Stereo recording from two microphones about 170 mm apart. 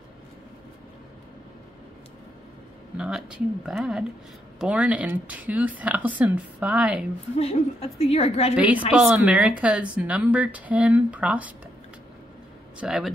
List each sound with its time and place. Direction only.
3.0 s speech: 5° right (ahead or behind)
7.3 s a woman's voice: 35° left (ahead or behind)
8.5 s speech: 10° right (ahead or behind)
12.8 s speech: centre (ahead or behind)